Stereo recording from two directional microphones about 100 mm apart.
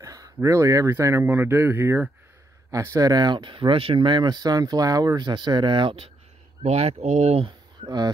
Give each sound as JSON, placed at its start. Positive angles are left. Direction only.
{"t": 0.0, "sound": "speech", "side_deg": -35}
{"t": 1.2, "sound": "speech", "side_deg": -20}
{"t": 2.7, "sound": "speech", "side_deg": -30}
{"t": 6.6, "sound": "speech", "side_deg": -90}